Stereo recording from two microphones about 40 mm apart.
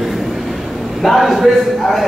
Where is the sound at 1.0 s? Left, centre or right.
Centre.